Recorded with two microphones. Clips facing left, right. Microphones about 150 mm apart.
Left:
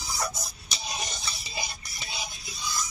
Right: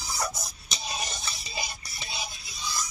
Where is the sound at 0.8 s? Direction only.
10° right (ahead or behind).